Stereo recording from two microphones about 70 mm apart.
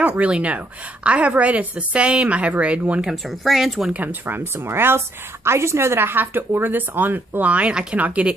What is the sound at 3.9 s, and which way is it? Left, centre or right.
A woman's voice, right.